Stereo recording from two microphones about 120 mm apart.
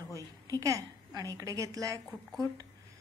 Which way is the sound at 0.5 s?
30° right (ahead or behind).